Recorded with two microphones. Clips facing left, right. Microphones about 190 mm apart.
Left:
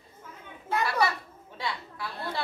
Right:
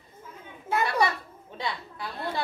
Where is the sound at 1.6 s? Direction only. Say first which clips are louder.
Right 1 dB; 20° right (ahead or behind).